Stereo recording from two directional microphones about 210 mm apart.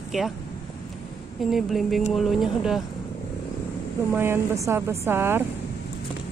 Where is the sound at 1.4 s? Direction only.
Centre (ahead or behind).